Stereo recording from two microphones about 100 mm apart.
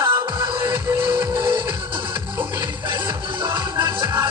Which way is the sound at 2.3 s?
15° right (ahead or behind).